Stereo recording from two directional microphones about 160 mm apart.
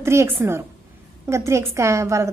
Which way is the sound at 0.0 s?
15° right (ahead or behind).